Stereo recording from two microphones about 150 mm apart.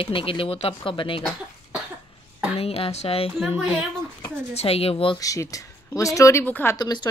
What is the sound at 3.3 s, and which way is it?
Speech, 5° right (ahead or behind).